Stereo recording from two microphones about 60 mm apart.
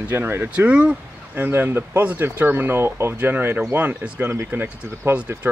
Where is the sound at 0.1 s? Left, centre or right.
Right.